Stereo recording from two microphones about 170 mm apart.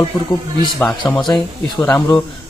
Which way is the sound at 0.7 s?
5° left (ahead or behind).